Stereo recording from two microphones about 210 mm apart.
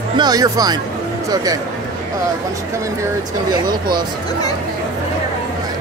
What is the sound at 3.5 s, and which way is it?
Speech, 20° right (ahead or behind).